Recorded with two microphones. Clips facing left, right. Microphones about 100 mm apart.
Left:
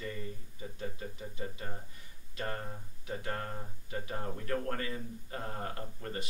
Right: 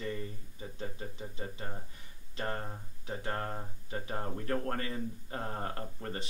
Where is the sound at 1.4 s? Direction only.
30° right (ahead or behind).